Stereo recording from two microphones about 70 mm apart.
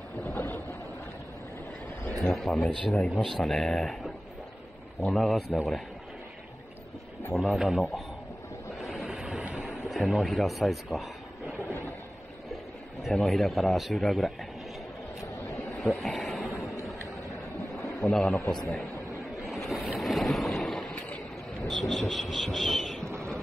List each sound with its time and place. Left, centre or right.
0.2 s boat: left
2.1 s speech: centre
7.3 s speech: centre
8.8 s a sound: centre
9.8 s speech: centre
13.1 s speech: centre
15.8 s a sound: centre
16.5 s boat: left
18.0 s speech: centre
19.7 s speech: centre